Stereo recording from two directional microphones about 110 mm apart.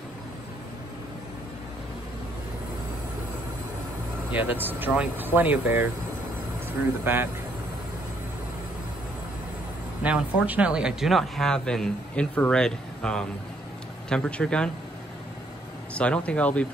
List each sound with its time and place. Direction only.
4.3 s speech: 15° right (ahead or behind)
7.1 s speech: 20° right (ahead or behind)
10.0 s speech: 10° right (ahead or behind); by 14.7 s 10° left (ahead or behind)
15.9 s speech: 10° left (ahead or behind)